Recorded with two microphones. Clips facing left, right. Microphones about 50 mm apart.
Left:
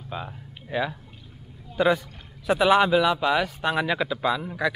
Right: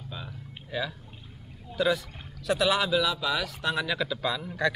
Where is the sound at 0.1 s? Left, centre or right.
Left.